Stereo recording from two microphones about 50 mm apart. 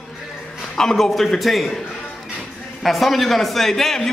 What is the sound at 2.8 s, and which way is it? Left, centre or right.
A man's voice, centre.